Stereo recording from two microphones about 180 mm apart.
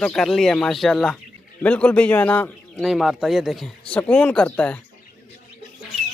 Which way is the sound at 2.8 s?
Centre (ahead or behind).